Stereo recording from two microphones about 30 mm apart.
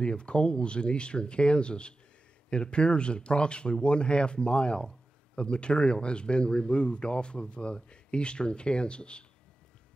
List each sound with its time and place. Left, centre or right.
0.0 s speech: left